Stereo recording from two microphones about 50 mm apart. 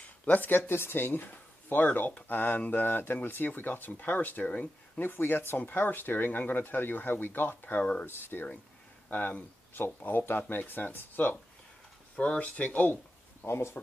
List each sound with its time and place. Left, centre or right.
0.2 s speech: left
0.7 s speech: left
4.5 s speech: left
5.0 s speech: left
8.1 s speech: left
9.1 s speech: left
9.8 s speech: left
12.2 s speech: left
12.9 s a sound: left